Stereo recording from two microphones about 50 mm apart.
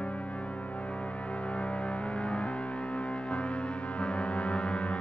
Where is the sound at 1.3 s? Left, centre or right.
Left.